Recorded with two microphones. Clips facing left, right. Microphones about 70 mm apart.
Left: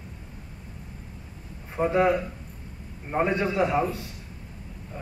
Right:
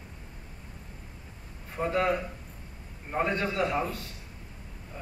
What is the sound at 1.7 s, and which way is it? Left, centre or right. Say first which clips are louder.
A man's voice: left 5 dB; centre.